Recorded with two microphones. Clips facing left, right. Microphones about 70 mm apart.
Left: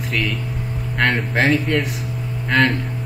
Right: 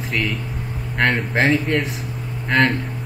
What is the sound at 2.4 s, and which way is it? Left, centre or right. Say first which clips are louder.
Speech: even; centre.